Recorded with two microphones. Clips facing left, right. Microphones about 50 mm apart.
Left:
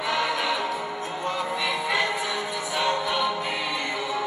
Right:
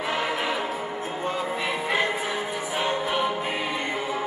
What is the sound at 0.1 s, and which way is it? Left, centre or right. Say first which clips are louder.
Music: left 2 dB; right.